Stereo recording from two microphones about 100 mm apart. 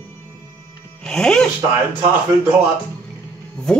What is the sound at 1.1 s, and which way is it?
Speech, 5° left (ahead or behind).